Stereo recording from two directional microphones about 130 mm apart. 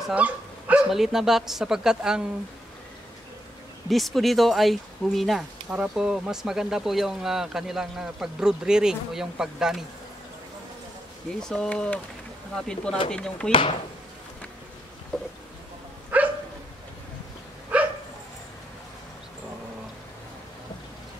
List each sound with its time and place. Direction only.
0.1 s speech: 10° right (ahead or behind)
3.9 s speech: centre (ahead or behind)
11.3 s speech: 5° left (ahead or behind)
13.5 s speech: 40° left (ahead or behind)
16.1 s dog: 10° right (ahead or behind)
17.7 s dog: 10° right (ahead or behind)